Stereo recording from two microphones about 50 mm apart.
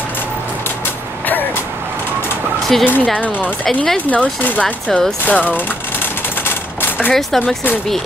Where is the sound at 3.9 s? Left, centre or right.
Left.